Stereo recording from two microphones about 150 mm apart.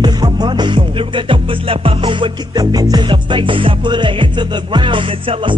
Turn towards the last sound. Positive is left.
turn(degrees=-35)  # may be behind; listen again after turning